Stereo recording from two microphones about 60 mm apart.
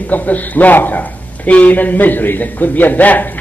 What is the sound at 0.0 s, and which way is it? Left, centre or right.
A man's voice, left.